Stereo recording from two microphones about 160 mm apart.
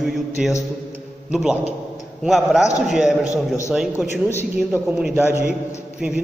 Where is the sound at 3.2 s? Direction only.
20° left (ahead or behind).